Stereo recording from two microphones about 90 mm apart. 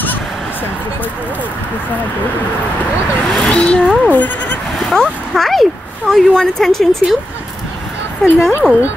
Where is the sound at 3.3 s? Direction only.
5° left (ahead or behind).